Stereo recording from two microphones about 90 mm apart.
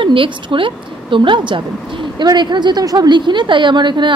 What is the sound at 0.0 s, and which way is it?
A woman's voice, 70° right (ahead or behind).